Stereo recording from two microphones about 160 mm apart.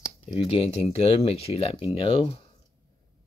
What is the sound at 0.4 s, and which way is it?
Speech, 40° left (ahead or behind).